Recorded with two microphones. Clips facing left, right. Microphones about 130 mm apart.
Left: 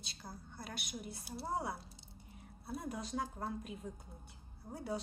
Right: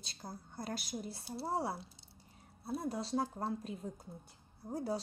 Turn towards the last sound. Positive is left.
turn(degrees=-35)  # may be behind; listen again after turning